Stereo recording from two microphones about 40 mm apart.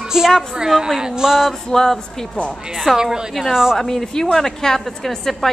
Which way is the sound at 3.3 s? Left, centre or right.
Centre.